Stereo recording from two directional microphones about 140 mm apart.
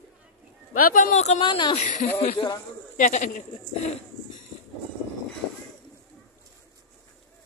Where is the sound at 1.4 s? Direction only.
35° left (ahead or behind).